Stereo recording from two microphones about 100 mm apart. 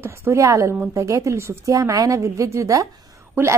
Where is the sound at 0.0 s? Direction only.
25° right (ahead or behind).